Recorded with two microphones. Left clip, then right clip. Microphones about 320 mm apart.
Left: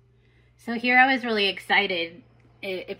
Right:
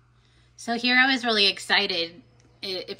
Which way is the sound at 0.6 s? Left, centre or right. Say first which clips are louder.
Left 2 dB; centre.